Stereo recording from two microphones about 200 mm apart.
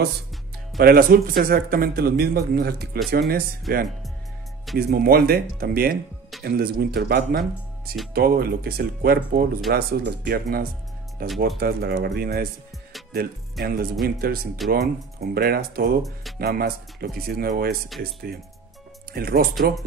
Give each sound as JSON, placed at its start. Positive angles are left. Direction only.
{"t": 0.7, "sound": "speech", "side_deg": -45}
{"t": 4.7, "sound": "speech", "side_deg": -50}